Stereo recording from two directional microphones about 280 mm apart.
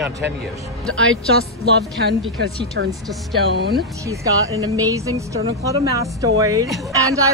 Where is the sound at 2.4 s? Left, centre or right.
Right.